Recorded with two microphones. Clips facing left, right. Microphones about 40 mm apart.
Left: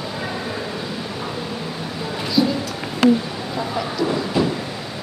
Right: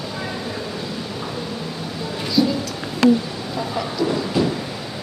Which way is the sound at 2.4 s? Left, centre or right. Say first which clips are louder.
Even; centre.